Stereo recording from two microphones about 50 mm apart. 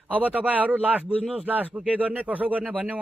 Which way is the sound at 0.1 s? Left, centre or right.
Right.